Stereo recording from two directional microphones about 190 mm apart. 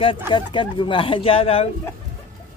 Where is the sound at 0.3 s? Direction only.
25° left (ahead or behind).